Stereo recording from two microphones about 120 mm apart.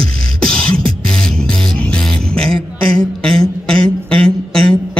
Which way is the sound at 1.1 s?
5° left (ahead or behind).